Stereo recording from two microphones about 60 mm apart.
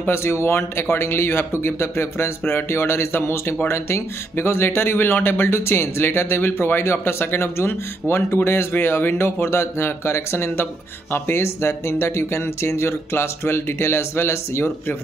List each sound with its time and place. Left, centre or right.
0.1 s speech: left